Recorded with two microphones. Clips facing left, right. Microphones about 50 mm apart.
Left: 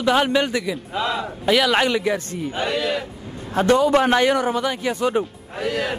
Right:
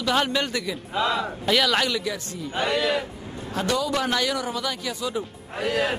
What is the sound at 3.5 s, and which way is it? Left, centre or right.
A man's voice, left.